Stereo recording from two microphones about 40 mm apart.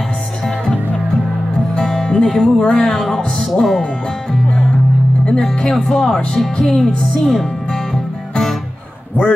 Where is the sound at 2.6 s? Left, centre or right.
Left.